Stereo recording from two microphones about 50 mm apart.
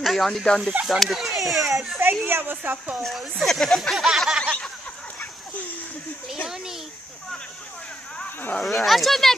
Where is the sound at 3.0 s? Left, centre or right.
Centre.